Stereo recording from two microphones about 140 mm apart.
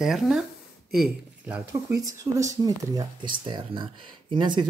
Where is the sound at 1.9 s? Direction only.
25° right (ahead or behind).